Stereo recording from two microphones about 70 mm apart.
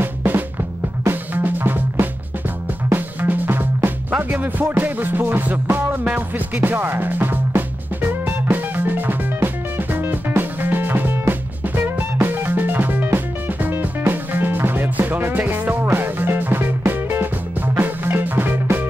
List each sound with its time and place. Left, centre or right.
0.0 s drum: right
1.0 s music: right